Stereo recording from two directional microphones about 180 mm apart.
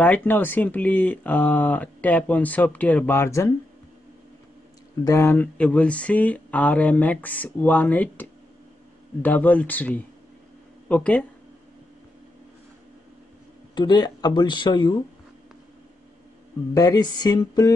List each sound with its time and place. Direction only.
0.0 s speech: 10° left (ahead or behind)
5.0 s speech: 15° left (ahead or behind)
13.7 s speech: 25° left (ahead or behind)
16.7 s speech: 20° left (ahead or behind)